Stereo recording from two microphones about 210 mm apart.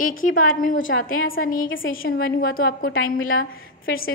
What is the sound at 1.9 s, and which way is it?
A woman's voice, 45° left (ahead or behind).